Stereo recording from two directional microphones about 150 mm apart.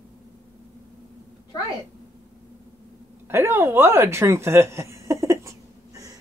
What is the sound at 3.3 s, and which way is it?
Speech, 15° right (ahead or behind).